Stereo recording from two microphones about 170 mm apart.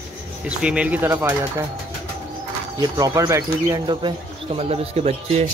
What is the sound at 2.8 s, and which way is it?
Speech, 20° right (ahead or behind).